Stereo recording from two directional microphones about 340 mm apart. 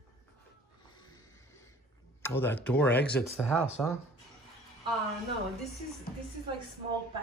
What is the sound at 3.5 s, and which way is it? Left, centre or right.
Speech, centre.